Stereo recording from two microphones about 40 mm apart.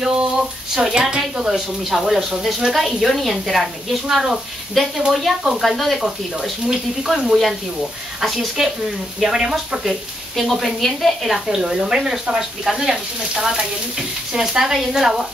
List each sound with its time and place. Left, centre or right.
0.0 s a sound: centre
0.9 s speech: centre
1.9 s speech: centre
4.8 s speech: centre
5.4 s speech: centre
5.7 s speech: centre
5.9 s speech: centre
10.4 s speech: centre